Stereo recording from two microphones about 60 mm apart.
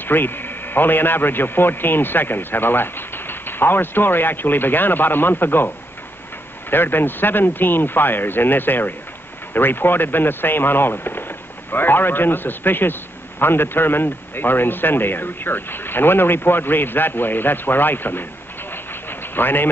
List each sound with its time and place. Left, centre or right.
0.0 s a man's voice: left
6.7 s a man's voice: left
18.7 s vehicle: left